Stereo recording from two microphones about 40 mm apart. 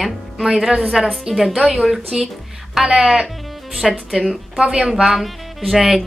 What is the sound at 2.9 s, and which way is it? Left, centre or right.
Speech, centre.